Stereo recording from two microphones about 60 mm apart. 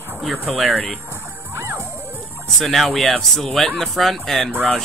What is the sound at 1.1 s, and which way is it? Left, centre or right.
Music, right.